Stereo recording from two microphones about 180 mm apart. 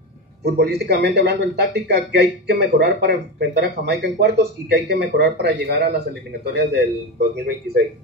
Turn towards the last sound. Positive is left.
turn(degrees=-70)  # may be behind; listen again after turning